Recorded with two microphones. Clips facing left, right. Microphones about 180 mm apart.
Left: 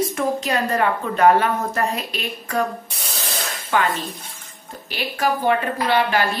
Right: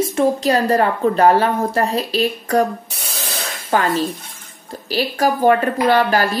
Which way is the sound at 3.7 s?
40° right (ahead or behind).